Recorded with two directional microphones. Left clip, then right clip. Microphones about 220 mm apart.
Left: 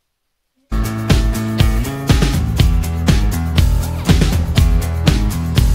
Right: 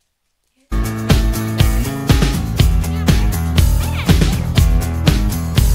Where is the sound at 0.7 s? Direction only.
Centre (ahead or behind).